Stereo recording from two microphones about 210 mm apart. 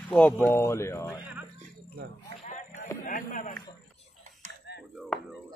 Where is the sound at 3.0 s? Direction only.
40° left (ahead or behind).